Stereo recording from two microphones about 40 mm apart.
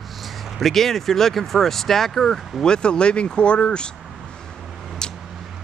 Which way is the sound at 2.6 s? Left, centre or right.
Left.